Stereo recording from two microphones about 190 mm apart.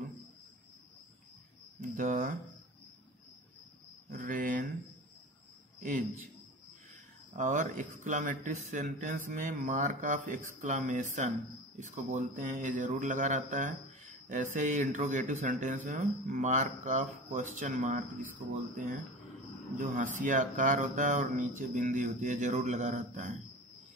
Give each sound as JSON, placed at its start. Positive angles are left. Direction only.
{"t": 1.8, "sound": "speech", "side_deg": -45}
{"t": 4.1, "sound": "a sound", "side_deg": -45}
{"t": 5.8, "sound": "cricket", "side_deg": -45}
{"t": 7.3, "sound": "speech", "side_deg": -40}
{"t": 19.8, "sound": "speech", "side_deg": -45}